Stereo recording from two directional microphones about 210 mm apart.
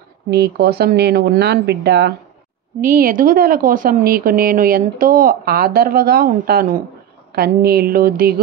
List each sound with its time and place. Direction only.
0.3 s a woman's voice: 50° right (ahead or behind)
2.8 s a woman's voice: 40° right (ahead or behind)